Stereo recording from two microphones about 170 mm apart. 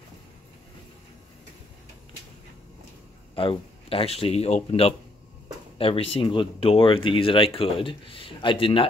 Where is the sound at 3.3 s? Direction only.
30° left (ahead or behind).